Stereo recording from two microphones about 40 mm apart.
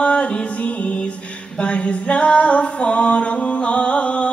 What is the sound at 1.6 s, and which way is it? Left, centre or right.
Female singing, left.